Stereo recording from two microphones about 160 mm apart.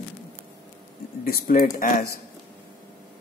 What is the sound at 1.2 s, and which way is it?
Speech, 65° left (ahead or behind).